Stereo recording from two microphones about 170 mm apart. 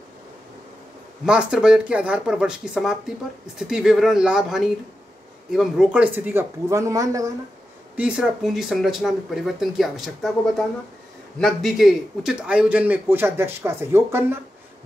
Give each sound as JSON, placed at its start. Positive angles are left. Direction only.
{"t": 1.2, "sound": "a man's voice", "side_deg": -5}
{"t": 7.9, "sound": "a man's voice", "side_deg": -5}